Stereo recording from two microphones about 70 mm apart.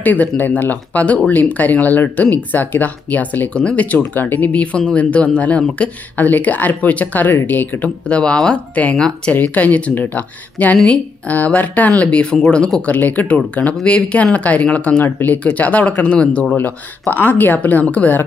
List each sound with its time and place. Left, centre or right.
0.0 s speech: left
8.1 s speech: centre
12.9 s speech: left
15.0 s speech: left
15.3 s speech: left